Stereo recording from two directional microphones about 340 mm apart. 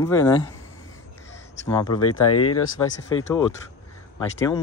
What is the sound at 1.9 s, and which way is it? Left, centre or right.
Speech, left.